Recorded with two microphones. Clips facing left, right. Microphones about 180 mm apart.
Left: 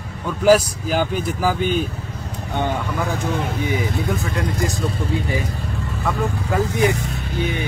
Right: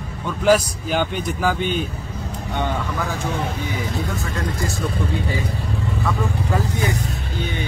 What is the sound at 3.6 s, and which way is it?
Speech, 55° left (ahead or behind).